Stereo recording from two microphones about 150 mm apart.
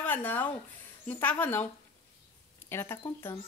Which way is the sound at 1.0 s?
10° left (ahead or behind).